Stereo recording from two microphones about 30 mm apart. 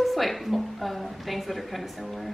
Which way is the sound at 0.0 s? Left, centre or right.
Centre.